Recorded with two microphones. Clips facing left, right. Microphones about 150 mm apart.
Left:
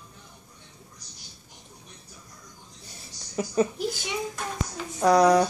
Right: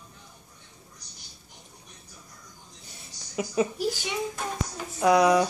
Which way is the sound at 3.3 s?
10° right (ahead or behind).